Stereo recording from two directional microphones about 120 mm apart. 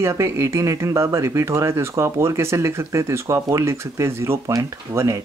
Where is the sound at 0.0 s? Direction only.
25° right (ahead or behind).